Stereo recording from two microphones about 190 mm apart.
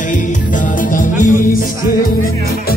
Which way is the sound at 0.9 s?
45° left (ahead or behind).